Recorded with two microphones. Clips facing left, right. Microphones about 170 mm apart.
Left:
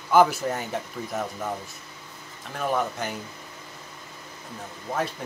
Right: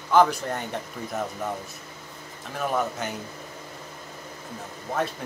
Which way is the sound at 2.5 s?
Centre (ahead or behind).